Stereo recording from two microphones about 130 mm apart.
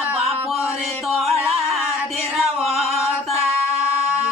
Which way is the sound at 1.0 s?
Centre (ahead or behind).